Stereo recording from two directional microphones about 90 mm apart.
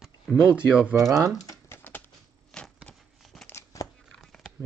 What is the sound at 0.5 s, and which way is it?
Speech, 15° right (ahead or behind).